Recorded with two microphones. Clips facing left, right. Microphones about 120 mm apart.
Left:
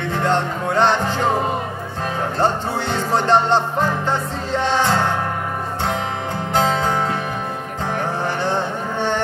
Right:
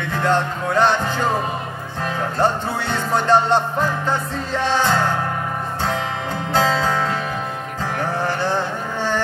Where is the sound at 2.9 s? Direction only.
30° left (ahead or behind).